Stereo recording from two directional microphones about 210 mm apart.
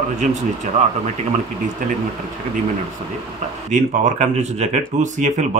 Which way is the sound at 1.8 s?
40° right (ahead or behind).